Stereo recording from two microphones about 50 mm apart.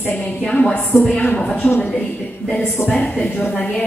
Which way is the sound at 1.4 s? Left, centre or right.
Left.